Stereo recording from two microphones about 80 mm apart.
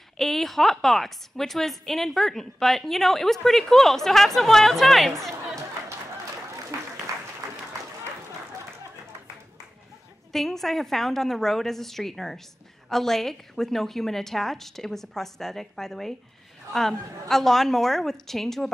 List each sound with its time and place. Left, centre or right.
0.2 s a woman's voice: centre
7.1 s applause: right
10.3 s a woman's voice: centre